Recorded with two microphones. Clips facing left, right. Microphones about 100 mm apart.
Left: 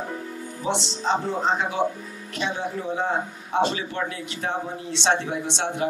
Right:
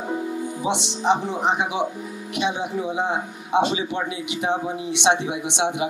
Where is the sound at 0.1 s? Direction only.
15° right (ahead or behind).